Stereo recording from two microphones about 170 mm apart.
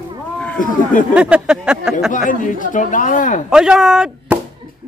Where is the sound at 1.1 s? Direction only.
5° right (ahead or behind).